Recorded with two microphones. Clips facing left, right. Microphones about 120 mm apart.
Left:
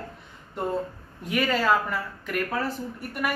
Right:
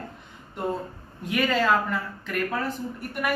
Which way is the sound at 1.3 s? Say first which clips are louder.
Even; centre (ahead or behind).